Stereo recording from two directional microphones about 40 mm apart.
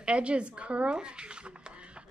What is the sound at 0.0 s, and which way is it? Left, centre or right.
Speech, right.